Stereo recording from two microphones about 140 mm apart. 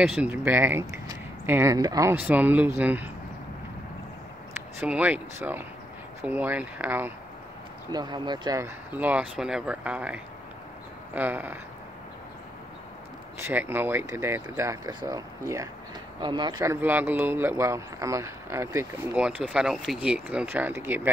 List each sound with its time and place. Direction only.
0.0 s speech: 5° right (ahead or behind)
4.6 s speech: 10° right (ahead or behind)
7.9 s speech: 30° right (ahead or behind)
8.5 s speech: 15° right (ahead or behind)
13.4 s speech: 15° right (ahead or behind)
16.2 s speech: 30° right (ahead or behind)
16.6 s speech: 15° right (ahead or behind)
19.1 s speech: 10° right (ahead or behind)